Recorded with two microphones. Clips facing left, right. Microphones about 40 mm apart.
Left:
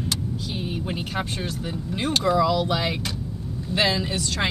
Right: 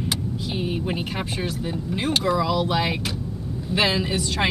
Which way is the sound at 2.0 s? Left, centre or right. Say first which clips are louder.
Left 2 dB; centre.